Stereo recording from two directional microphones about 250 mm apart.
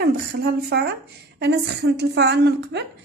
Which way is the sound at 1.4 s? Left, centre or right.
Right.